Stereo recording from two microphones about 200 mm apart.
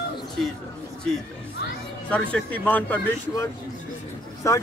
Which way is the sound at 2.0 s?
5° left (ahead or behind).